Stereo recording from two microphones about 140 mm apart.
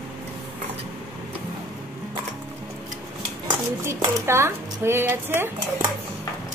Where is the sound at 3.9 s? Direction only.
20° right (ahead or behind).